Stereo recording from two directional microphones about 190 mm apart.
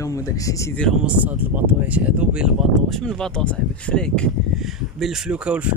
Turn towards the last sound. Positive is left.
turn(degrees=-5)  # may be behind; listen again after turning